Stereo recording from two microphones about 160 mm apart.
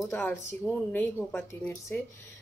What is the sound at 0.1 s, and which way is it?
Speech, 15° left (ahead or behind).